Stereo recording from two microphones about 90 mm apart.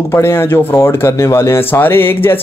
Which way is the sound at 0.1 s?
25° left (ahead or behind).